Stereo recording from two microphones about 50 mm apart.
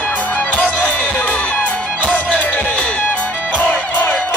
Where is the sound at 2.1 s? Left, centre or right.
Left.